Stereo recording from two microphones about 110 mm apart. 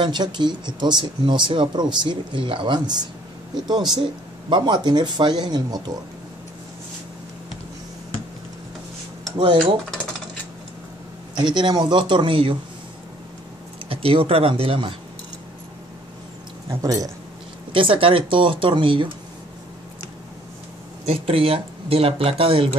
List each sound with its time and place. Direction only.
0.0 s speech: 45° right (ahead or behind)
9.4 s speech: 50° right (ahead or behind)
11.3 s speech: 45° right (ahead or behind)
13.8 s speech: 55° right (ahead or behind)
16.8 s speech: 35° right (ahead or behind)
17.7 s speech: 50° right (ahead or behind)
21.0 s speech: 60° right (ahead or behind)